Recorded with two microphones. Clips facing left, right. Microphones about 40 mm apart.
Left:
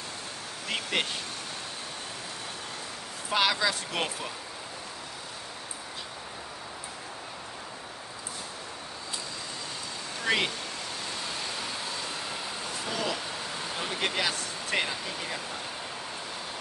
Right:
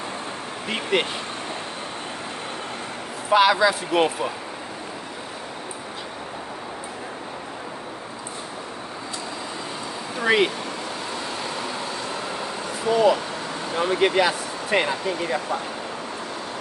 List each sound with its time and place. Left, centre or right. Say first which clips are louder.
0.7 s speech: right 7 dB; right
3.3 s speech: right 9 dB; centre
10.1 s speech: right 8 dB; centre
11.4 s vehicle: right 6 dB; centre
13.7 s speech: right 12 dB; centre